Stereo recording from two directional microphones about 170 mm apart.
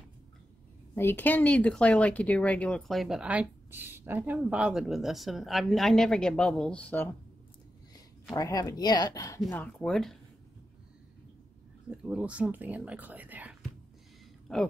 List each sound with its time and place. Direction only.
0.9 s speech: 10° left (ahead or behind)
8.3 s a woman's voice: 20° left (ahead or behind)
9.4 s speech: 10° left (ahead or behind)
11.9 s speech: 5° right (ahead or behind)
14.5 s speech: centre (ahead or behind)